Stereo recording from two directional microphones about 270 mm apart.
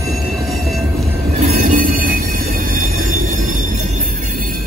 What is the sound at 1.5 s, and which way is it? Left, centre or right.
Train, right.